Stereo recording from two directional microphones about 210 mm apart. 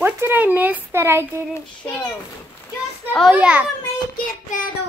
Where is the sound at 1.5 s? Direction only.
5° left (ahead or behind).